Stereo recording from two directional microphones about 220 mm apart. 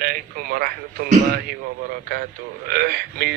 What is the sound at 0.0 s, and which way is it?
A man's voice, 45° right (ahead or behind).